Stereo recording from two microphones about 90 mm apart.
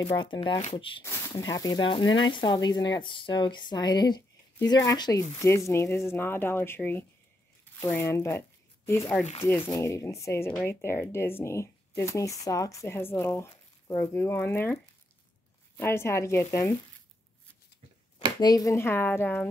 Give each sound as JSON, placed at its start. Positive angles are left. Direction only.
{"t": 0.2, "sound": "speech", "side_deg": 60}
{"t": 1.3, "sound": "speech", "side_deg": 45}
{"t": 1.9, "sound": "speech", "side_deg": 65}
{"t": 15.8, "sound": "speech", "side_deg": 30}
{"t": 18.4, "sound": "speech", "side_deg": 45}
{"t": 18.7, "sound": "speech", "side_deg": 30}